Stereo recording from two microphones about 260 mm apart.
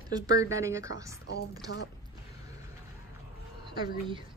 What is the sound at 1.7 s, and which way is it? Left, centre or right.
Speech, left.